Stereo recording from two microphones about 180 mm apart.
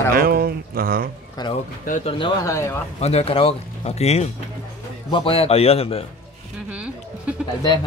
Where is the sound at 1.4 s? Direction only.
25° left (ahead or behind).